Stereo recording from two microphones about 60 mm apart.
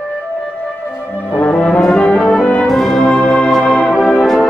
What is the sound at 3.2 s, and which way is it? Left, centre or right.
Music, left.